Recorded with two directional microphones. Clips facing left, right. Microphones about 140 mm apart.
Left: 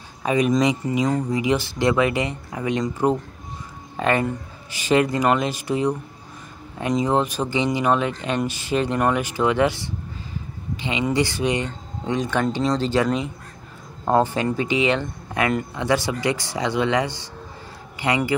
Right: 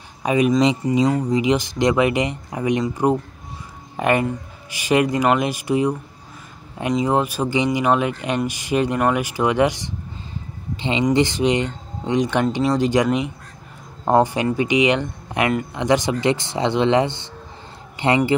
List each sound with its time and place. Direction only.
0.2 s speech: 10° right (ahead or behind)
0.6 s speech: 25° right (ahead or behind)
7.1 s speech: 10° right (ahead or behind)
10.8 s speech: 30° right (ahead or behind)